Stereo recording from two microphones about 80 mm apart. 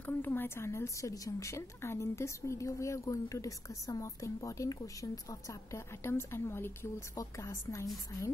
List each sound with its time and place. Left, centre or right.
0.0 s a woman's voice: left
7.2 s a woman's voice: left